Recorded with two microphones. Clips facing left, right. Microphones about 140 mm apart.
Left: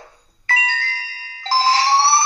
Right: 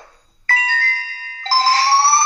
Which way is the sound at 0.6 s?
50° right (ahead or behind).